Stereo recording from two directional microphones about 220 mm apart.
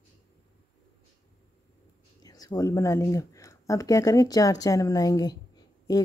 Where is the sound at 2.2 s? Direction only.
15° left (ahead or behind).